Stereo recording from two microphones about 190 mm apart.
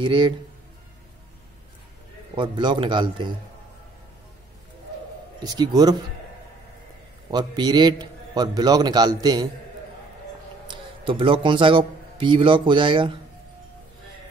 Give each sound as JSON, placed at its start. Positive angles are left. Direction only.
{"t": 0.0, "sound": "a man's voice", "side_deg": -25}
{"t": 2.3, "sound": "a man's voice", "side_deg": -25}
{"t": 5.4, "sound": "a man's voice", "side_deg": -20}
{"t": 7.2, "sound": "a man's voice", "side_deg": -20}
{"t": 10.7, "sound": "a man's voice", "side_deg": -25}